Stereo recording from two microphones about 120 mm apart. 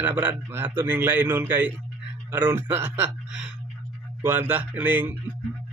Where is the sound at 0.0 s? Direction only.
15° right (ahead or behind).